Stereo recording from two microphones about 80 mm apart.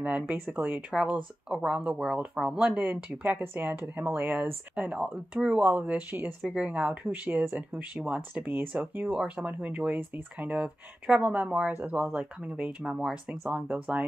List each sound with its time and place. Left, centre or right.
0.0 s speech: right
6.4 s speech: centre